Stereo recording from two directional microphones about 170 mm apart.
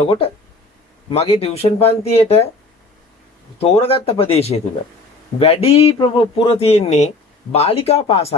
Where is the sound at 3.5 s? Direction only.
35° left (ahead or behind).